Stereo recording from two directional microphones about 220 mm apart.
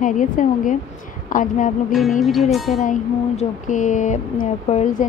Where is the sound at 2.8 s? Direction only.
35° left (ahead or behind).